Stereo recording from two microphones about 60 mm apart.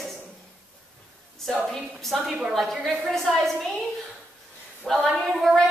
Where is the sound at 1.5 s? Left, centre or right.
Centre.